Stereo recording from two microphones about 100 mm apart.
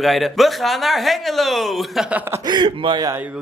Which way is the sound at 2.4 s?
50° right (ahead or behind).